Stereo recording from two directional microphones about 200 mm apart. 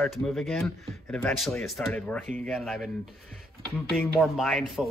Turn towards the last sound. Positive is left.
turn(degrees=0)  # may be behind; listen again after turning